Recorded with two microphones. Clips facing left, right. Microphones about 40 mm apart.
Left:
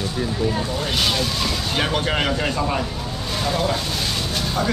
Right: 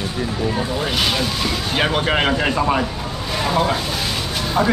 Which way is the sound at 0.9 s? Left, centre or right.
Centre.